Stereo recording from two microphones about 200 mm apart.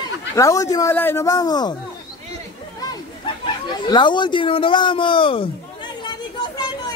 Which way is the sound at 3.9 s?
20° left (ahead or behind).